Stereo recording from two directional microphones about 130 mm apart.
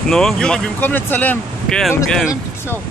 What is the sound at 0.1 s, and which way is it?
Speech, 5° left (ahead or behind).